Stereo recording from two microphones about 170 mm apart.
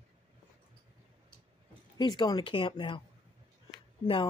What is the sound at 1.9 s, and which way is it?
Speech, 25° left (ahead or behind).